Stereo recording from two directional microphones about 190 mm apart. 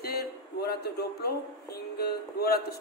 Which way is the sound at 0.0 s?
55° left (ahead or behind).